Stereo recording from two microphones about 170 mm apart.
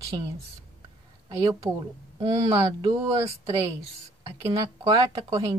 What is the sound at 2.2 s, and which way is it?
Speech, 25° right (ahead or behind).